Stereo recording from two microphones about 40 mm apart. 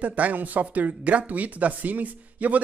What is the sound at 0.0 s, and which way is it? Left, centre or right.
Speech, right.